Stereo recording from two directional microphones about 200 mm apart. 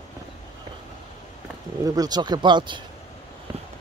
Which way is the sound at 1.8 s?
20° right (ahead or behind).